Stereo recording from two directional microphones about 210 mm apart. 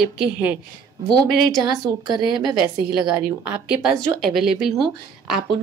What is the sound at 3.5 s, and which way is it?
A woman's voice, 5° right (ahead or behind).